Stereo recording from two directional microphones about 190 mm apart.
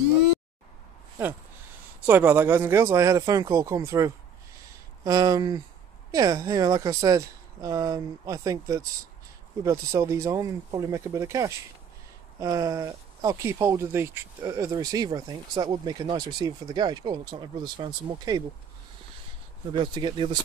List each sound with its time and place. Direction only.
2.0 s speech: 10° right (ahead or behind)
19.7 s speech: 25° right (ahead or behind)